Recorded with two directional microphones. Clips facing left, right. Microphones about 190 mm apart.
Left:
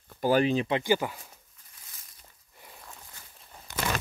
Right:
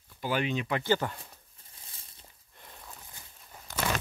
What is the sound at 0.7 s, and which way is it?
Speech, 15° left (ahead or behind).